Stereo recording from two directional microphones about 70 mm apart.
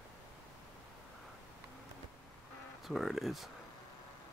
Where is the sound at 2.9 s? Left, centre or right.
Centre.